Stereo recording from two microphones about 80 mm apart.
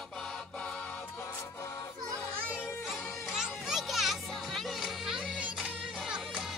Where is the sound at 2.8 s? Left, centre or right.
Centre.